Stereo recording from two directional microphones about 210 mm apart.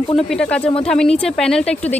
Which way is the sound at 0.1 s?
5° left (ahead or behind).